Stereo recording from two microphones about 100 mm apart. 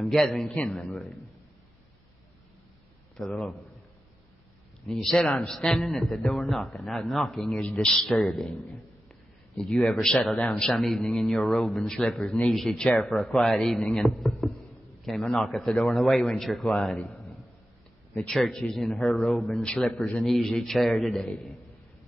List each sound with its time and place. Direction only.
0.0 s a man's voice: 5° left (ahead or behind)
0.8 s a man's voice: centre (ahead or behind)
3.2 s a man's voice: 10° left (ahead or behind)
4.8 s a man's voice: 5° left (ahead or behind)